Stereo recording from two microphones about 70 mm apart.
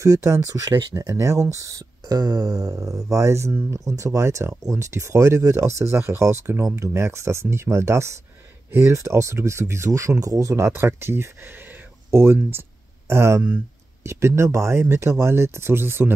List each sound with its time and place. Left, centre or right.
0.0 s speech: right
1.0 s speech: right
2.4 s speech: right